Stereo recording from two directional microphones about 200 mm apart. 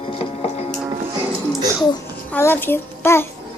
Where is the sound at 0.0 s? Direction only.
25° left (ahead or behind).